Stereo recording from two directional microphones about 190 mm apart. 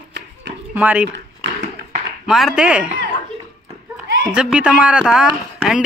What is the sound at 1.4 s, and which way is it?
Tap, 65° right (ahead or behind).